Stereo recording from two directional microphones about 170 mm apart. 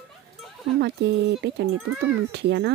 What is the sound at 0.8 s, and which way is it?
Speech, 90° right.